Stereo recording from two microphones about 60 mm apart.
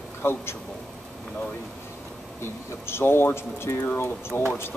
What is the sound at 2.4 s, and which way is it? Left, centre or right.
Speech, left.